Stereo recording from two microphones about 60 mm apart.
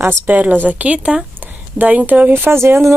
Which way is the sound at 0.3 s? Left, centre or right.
Right.